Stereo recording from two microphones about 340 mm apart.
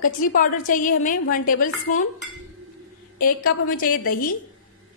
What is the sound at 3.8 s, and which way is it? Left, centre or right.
Speech, left.